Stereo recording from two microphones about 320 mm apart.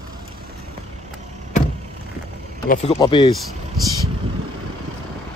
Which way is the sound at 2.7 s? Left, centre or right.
Centre.